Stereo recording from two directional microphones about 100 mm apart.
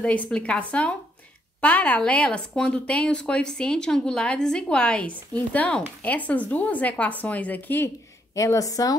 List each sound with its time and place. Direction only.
0.0 s speech: 15° left (ahead or behind)
8.4 s a woman's voice: 35° left (ahead or behind)